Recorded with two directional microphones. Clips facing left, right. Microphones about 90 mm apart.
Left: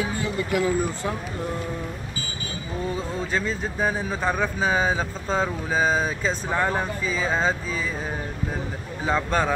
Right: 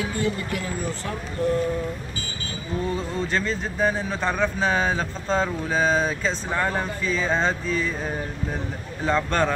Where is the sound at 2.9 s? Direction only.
10° left (ahead or behind).